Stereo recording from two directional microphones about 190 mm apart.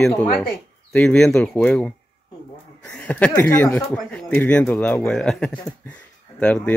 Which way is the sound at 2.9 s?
5° left (ahead or behind).